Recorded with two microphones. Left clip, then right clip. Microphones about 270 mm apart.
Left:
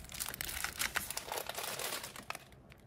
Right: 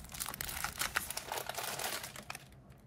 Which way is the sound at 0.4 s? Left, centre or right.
Centre.